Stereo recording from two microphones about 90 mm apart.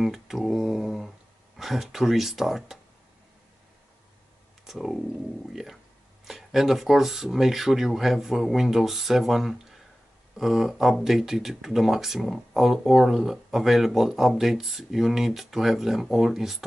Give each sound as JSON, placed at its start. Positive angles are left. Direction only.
{"t": 0.0, "sound": "speech", "side_deg": 0}
{"t": 4.6, "sound": "speech", "side_deg": 0}